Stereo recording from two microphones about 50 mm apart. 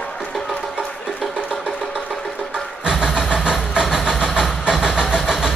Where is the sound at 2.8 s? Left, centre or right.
Centre.